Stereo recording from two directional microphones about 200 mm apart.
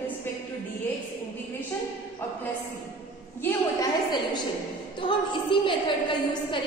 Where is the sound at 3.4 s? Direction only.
10° left (ahead or behind).